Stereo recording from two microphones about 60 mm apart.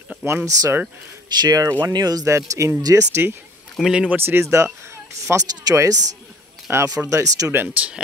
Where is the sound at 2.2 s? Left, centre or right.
Right.